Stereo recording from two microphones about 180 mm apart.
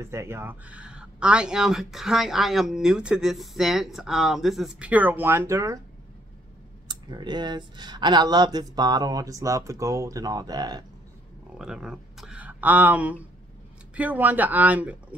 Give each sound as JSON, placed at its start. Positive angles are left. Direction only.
{"t": 0.0, "sound": "speech", "side_deg": -15}
{"t": 6.9, "sound": "speech", "side_deg": -25}
{"t": 11.5, "sound": "speech", "side_deg": -5}